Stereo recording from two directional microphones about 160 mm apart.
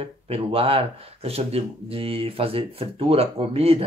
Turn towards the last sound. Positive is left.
turn(degrees=-40)  # may be behind; listen again after turning